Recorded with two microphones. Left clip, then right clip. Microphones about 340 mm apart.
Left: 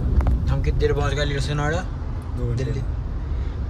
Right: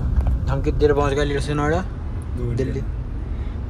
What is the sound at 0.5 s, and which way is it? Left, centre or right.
Speech, centre.